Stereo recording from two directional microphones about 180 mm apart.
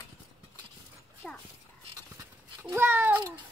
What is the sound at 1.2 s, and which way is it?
Dog, 5° left (ahead or behind).